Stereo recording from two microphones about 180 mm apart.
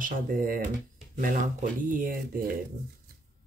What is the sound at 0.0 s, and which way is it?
Speech, 50° right (ahead or behind).